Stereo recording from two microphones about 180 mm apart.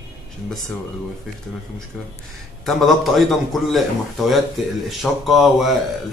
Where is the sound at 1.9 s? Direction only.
5° right (ahead or behind).